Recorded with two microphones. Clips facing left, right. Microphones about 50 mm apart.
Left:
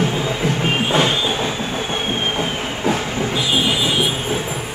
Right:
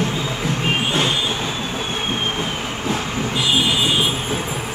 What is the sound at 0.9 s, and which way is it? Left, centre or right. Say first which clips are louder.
Train: left 6 dB; centre.